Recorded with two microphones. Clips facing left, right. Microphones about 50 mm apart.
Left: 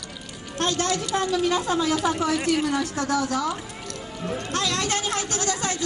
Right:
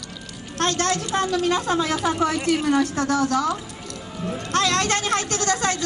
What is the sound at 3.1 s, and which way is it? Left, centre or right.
Speech, right.